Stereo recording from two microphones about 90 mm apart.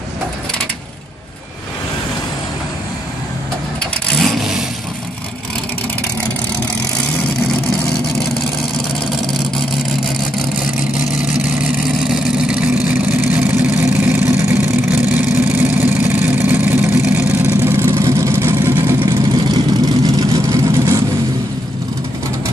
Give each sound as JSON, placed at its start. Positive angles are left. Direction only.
{"t": 3.8, "sound": "vehicle", "side_deg": 5}
{"t": 11.3, "sound": "vehicle", "side_deg": -10}
{"t": 18.9, "sound": "vehicle", "side_deg": -60}